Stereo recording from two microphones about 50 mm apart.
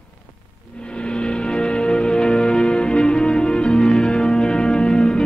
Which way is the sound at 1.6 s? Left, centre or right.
Centre.